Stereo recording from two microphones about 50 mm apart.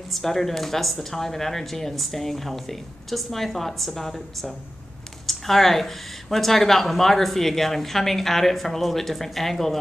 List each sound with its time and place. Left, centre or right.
0.1 s speech: centre